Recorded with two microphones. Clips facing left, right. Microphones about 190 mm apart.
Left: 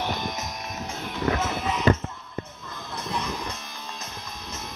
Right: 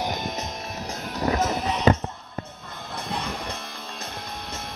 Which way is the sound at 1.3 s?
35° right (ahead or behind).